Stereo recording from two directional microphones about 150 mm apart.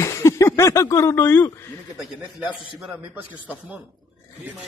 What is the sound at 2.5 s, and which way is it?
Speech, 35° left (ahead or behind).